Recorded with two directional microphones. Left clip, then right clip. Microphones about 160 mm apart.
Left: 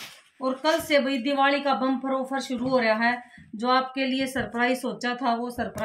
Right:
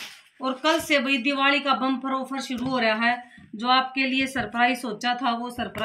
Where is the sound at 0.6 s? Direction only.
25° left (ahead or behind).